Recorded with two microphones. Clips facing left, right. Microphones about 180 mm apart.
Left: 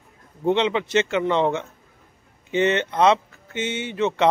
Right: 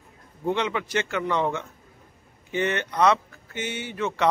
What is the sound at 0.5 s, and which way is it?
Speech, 25° left (ahead or behind).